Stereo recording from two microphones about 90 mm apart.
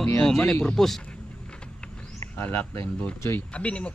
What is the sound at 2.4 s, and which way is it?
Speech, 25° left (ahead or behind).